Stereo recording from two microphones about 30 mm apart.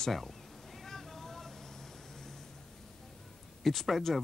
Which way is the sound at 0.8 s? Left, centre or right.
Centre.